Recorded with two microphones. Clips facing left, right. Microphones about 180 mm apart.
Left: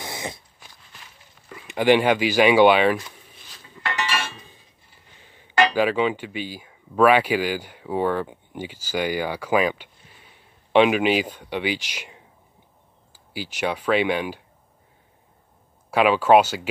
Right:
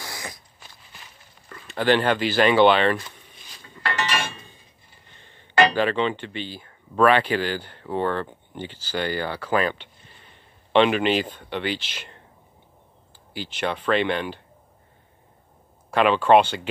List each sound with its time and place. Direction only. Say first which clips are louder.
0.0 s cat: left 4 dB; 25° left (ahead or behind)
1.5 s speech: left 3 dB; 10° left (ahead or behind)
3.5 s music: even; 5° left (ahead or behind)
3.8 s a sound: right 1 dB; 10° left (ahead or behind)
5.0 s speech: left 1 dB; 10° left (ahead or behind)
15.9 s speech: left 1 dB; 10° left (ahead or behind)